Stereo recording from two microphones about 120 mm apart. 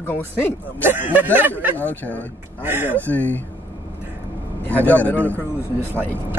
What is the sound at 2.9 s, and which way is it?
Speech, 15° left (ahead or behind).